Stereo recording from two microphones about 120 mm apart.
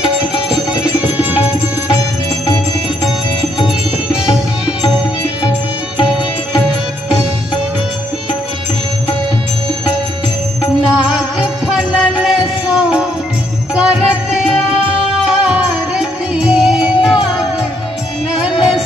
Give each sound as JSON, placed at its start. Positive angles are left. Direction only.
{"t": 1.1, "sound": "music", "side_deg": -10}
{"t": 2.0, "sound": "music", "side_deg": 25}
{"t": 4.3, "sound": "music", "side_deg": -5}
{"t": 11.1, "sound": "music", "side_deg": -5}
{"t": 18.4, "sound": "music", "side_deg": -5}